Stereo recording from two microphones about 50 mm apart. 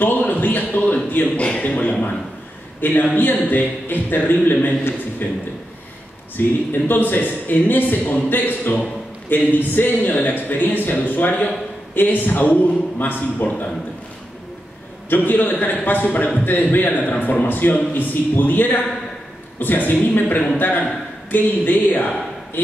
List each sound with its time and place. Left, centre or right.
0.0 s a sound: left
1.1 s a man's voice: left
2.8 s speech: left
15.0 s speech: left